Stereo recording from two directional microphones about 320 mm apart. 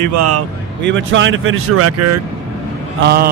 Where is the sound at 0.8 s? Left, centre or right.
Right.